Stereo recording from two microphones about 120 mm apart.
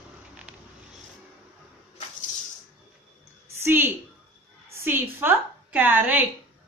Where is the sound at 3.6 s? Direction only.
20° right (ahead or behind).